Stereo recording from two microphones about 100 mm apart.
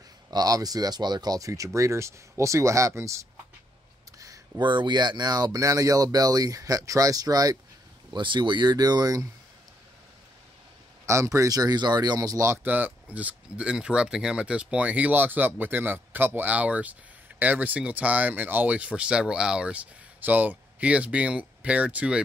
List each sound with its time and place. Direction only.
0.3 s speech: 40° right (ahead or behind)
4.6 s speech: 50° right (ahead or behind)
8.1 s speech: 50° right (ahead or behind)
11.1 s speech: 30° right (ahead or behind)
12.6 s speech: 15° right (ahead or behind)